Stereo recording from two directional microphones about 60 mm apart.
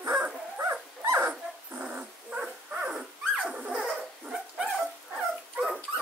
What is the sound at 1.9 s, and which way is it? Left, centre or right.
Dog, right.